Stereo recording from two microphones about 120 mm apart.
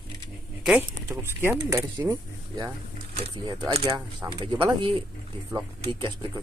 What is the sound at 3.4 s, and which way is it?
Speech, 40° right (ahead or behind).